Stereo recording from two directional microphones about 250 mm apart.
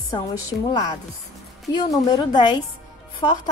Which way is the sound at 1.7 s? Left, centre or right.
Centre.